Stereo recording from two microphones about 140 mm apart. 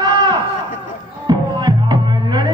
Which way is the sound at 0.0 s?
30° right (ahead or behind).